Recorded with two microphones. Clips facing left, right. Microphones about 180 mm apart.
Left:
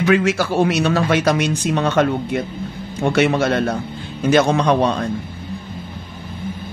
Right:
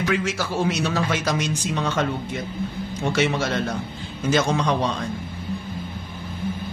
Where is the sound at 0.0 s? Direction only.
65° left (ahead or behind).